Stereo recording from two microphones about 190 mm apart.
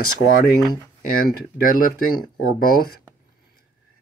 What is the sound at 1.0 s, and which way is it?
Speech, 50° left (ahead or behind).